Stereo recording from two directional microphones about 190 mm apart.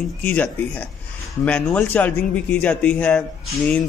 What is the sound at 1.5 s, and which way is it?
Speech, 5° left (ahead or behind).